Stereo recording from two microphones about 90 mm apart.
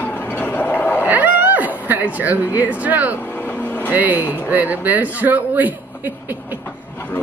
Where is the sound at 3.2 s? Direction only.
20° left (ahead or behind).